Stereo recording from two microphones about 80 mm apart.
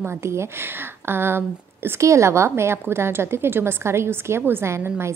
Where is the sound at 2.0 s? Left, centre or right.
Right.